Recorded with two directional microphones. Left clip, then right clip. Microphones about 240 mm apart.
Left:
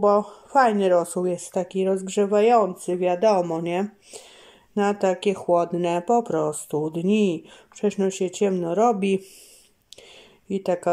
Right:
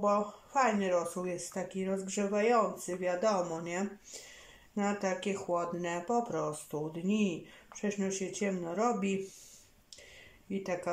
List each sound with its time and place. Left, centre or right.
0.0 s speech: left
5.0 s speech: left
8.4 s speech: left
10.5 s speech: left